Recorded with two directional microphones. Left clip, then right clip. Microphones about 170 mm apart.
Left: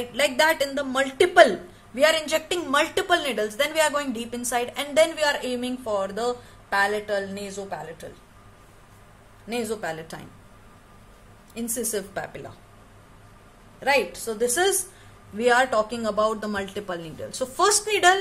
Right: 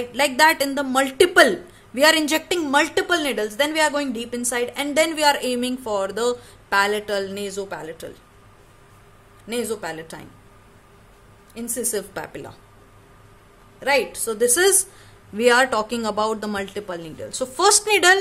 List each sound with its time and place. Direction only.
0.0 s a woman's voice: 20° right (ahead or behind); by 8.1 s 55° right (ahead or behind)
9.5 s speech: 20° right (ahead or behind)
11.5 s a woman's voice: 10° right (ahead or behind)
11.9 s a woman's voice: 35° right (ahead or behind)
13.7 s speech: 20° right (ahead or behind)